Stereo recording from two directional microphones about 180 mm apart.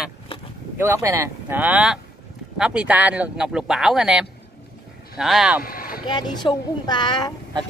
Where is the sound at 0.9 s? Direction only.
15° right (ahead or behind).